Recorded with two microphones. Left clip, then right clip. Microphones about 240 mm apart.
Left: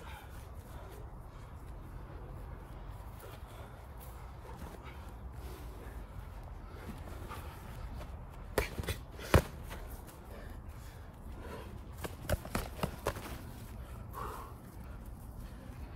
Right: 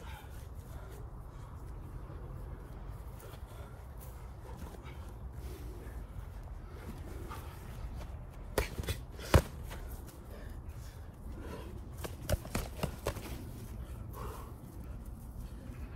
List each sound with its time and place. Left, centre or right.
8.5 s a sound: centre
11.4 s horse: centre
14.1 s dog: centre